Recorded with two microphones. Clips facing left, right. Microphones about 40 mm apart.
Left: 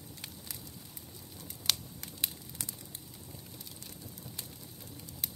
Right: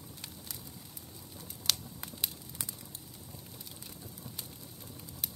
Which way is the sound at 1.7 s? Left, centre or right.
Centre.